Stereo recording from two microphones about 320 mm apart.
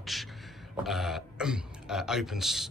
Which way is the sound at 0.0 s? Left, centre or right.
Centre.